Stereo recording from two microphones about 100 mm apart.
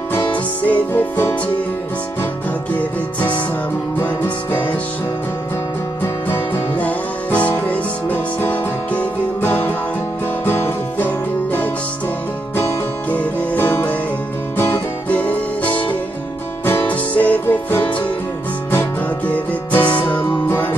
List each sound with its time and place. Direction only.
0.1 s music: 20° left (ahead or behind)
2.7 s music: 15° left (ahead or behind)
6.2 s music: 20° left (ahead or behind)
16.8 s music: 15° left (ahead or behind)